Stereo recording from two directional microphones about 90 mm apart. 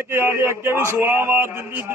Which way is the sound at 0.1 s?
25° right (ahead or behind).